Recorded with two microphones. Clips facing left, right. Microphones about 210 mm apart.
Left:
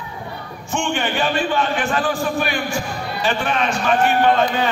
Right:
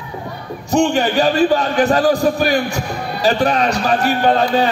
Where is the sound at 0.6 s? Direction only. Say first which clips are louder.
Right 8 dB; 40° right (ahead or behind).